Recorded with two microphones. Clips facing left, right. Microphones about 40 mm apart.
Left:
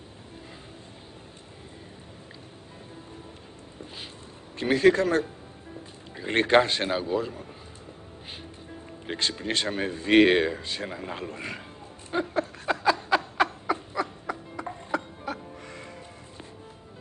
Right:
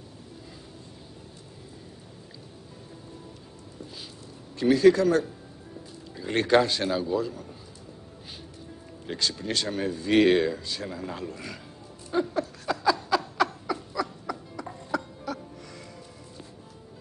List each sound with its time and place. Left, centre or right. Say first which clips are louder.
4.6 s speech: right 2 dB; left
9.0 s speech: left 1 dB; left
12.1 s a sound: right 1 dB; left